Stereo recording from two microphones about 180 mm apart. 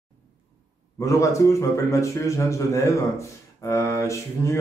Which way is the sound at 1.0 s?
15° left (ahead or behind).